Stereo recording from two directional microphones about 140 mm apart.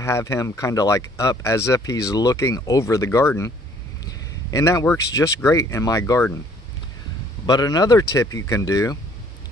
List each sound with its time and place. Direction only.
0.0 s speech: 20° left (ahead or behind)
7.4 s speech: 30° left (ahead or behind)